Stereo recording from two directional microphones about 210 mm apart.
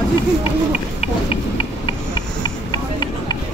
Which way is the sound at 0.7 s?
30° left (ahead or behind).